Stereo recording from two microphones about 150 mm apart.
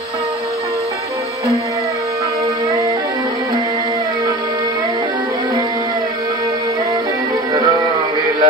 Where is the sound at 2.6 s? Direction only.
20° right (ahead or behind).